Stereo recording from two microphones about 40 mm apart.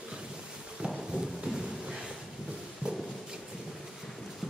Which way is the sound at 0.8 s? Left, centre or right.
Right.